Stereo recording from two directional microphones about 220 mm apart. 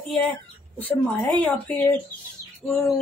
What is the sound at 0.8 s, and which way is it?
A woman's voice, 5° left (ahead or behind).